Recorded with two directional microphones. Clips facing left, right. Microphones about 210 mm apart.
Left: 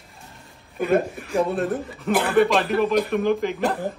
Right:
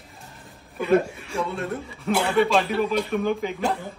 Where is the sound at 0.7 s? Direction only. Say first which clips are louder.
Even; 55° left (ahead or behind).